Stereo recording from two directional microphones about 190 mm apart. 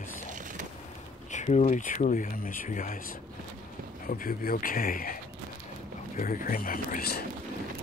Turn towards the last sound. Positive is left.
turn(degrees=50)  # may be behind; listen again after turning